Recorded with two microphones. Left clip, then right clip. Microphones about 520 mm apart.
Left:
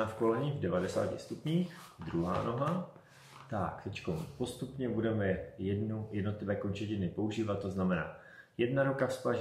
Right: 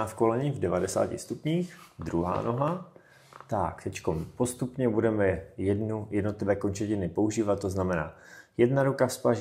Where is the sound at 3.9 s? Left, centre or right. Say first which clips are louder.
Right 8 dB; right.